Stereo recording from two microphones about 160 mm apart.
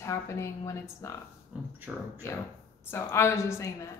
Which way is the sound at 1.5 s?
10° right (ahead or behind).